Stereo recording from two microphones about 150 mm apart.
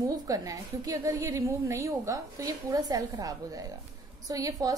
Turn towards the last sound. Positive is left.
turn(degrees=-25)  # may be behind; listen again after turning